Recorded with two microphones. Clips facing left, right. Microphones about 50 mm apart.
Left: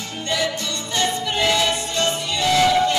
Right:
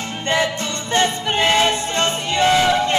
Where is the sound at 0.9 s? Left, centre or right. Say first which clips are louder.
Right 4 dB; right.